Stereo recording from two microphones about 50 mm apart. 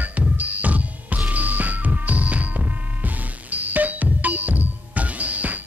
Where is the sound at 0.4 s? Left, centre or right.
Right.